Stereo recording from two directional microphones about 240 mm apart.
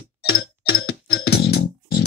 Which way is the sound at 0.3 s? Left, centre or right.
Left.